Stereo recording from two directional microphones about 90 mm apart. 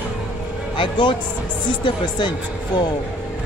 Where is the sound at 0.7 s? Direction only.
65° left (ahead or behind).